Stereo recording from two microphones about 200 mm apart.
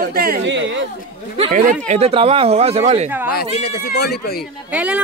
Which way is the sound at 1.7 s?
35° right (ahead or behind).